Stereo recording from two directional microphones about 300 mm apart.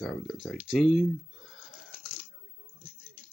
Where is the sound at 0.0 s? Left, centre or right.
Centre.